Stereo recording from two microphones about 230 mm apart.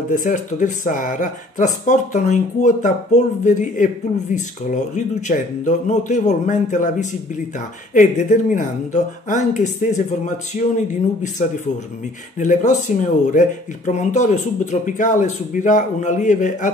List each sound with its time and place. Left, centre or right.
0.1 s speech: left
12.4 s speech: left